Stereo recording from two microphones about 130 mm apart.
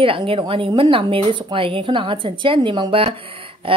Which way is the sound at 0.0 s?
40° right (ahead or behind).